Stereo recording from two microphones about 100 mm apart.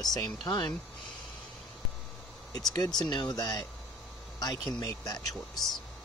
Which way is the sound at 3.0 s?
45° left (ahead or behind).